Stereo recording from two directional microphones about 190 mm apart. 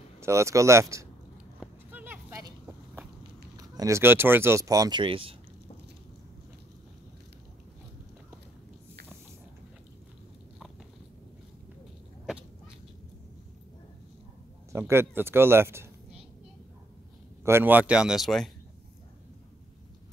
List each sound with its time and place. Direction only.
0.2 s speech: 15° right (ahead or behind)
1.6 s clip-clop: 10° right (ahead or behind)
3.5 s speech: 20° right (ahead or behind)
14.7 s speech: 15° right (ahead or behind)
17.5 s speech: 10° right (ahead or behind)